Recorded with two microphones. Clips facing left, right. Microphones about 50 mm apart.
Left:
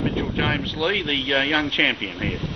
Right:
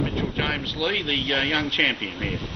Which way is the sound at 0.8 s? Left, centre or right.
Centre.